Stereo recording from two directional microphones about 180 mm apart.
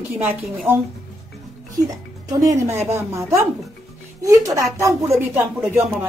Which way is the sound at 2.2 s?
20° right (ahead or behind).